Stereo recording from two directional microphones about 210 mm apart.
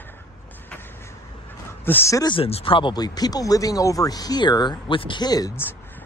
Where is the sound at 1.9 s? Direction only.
10° left (ahead or behind).